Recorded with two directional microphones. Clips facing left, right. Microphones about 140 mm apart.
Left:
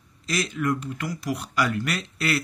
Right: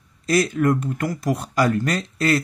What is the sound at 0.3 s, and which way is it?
Speech, 50° right (ahead or behind).